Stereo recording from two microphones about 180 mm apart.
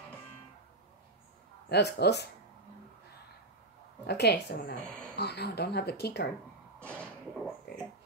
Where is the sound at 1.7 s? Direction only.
65° left (ahead or behind).